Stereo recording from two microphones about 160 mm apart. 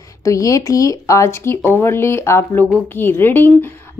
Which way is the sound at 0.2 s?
20° left (ahead or behind).